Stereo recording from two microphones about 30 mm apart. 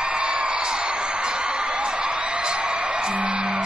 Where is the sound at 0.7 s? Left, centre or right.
Right.